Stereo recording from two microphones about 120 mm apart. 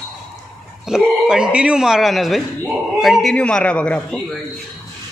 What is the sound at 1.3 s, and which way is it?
A man's voice, 10° right (ahead or behind).